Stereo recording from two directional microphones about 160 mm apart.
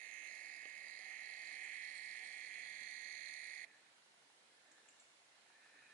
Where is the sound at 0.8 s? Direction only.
10° left (ahead or behind).